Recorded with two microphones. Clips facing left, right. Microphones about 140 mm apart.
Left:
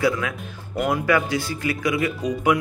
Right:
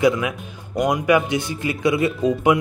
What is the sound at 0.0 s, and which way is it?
Speech, 20° right (ahead or behind).